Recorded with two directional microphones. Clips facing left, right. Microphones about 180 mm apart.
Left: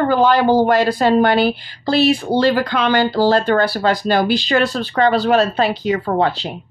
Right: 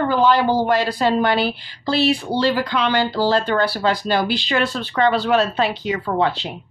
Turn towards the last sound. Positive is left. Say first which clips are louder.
# left 3 dB
turn(degrees=40)  # may be behind; listen again after turning